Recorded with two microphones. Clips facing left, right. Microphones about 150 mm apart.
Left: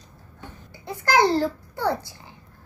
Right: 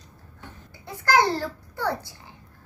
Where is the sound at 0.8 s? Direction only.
20° left (ahead or behind).